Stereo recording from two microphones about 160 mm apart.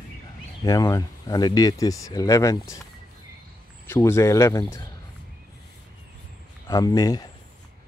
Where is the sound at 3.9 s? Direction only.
15° left (ahead or behind).